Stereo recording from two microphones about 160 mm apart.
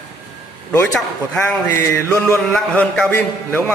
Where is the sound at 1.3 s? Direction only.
15° left (ahead or behind).